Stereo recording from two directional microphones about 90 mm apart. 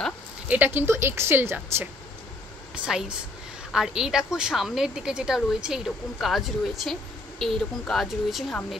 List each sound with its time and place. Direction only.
0.5 s a woman's voice: 20° right (ahead or behind)
2.7 s a woman's voice: 5° right (ahead or behind)